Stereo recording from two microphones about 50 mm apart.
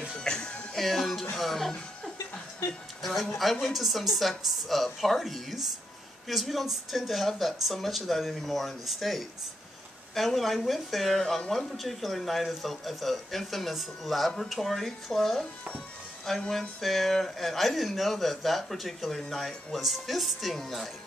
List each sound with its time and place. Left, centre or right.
0.2 s music: centre
1.3 s speech: centre
3.0 s speech: centre